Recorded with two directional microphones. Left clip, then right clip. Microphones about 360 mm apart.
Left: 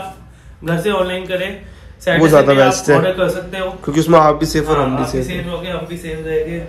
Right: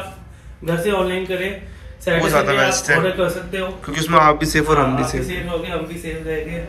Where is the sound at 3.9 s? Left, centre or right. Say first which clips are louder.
Left 3 dB; centre.